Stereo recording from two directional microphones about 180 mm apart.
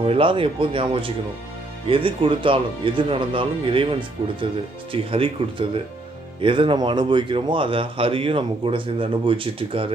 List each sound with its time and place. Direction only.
0.0 s speech: 30° right (ahead or behind)